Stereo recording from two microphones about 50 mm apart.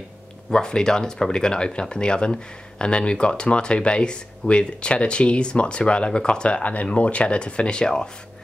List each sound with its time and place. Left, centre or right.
0.5 s speech: centre